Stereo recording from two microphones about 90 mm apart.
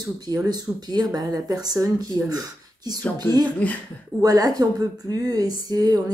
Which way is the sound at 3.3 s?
25° left (ahead or behind).